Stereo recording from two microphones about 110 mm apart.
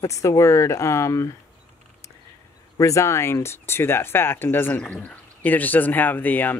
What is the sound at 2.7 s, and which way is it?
Speech, 30° left (ahead or behind).